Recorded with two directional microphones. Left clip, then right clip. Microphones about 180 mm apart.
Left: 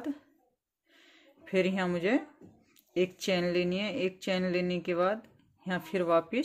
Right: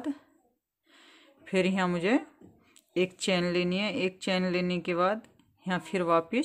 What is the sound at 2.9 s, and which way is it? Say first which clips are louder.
Speech: right 1 dB; 20° right (ahead or behind).